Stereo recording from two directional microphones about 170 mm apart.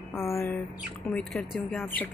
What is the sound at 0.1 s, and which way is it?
Speech, 15° left (ahead or behind).